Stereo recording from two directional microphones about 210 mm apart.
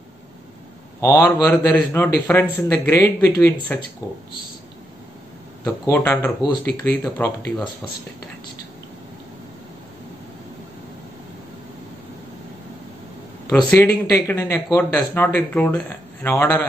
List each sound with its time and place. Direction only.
1.0 s speech: 15° left (ahead or behind)
4.0 s speech: 10° right (ahead or behind)
5.6 s speech: 10° left (ahead or behind)
13.5 s speech: 5° left (ahead or behind)